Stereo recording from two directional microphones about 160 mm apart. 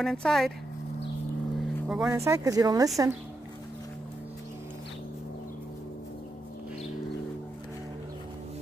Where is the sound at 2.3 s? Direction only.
20° right (ahead or behind).